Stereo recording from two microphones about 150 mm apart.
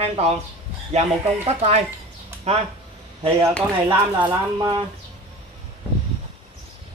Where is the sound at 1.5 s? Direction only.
45° right (ahead or behind).